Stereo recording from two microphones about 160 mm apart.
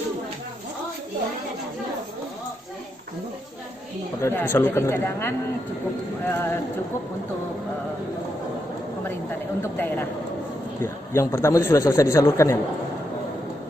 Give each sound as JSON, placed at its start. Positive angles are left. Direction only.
{"t": 4.2, "sound": "speech", "side_deg": 15}
{"t": 9.6, "sound": "a man's voice", "side_deg": 15}